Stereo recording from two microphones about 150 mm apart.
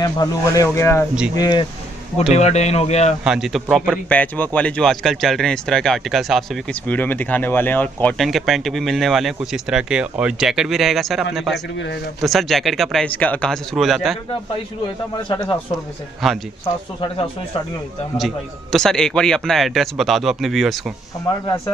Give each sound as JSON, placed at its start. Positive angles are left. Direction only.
{"t": 0.0, "sound": "speech", "side_deg": 25}
{"t": 2.3, "sound": "speech", "side_deg": 45}
{"t": 3.3, "sound": "a man's voice", "side_deg": -5}
{"t": 16.2, "sound": "a man's voice", "side_deg": 0}
{"t": 18.1, "sound": "a man's voice", "side_deg": 0}